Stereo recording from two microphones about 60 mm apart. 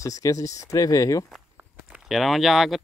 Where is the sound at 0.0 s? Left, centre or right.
Left.